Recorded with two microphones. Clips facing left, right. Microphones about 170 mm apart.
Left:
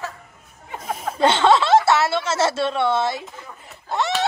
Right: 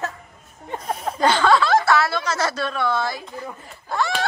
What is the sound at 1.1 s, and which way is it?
Chuckle, 25° left (ahead or behind).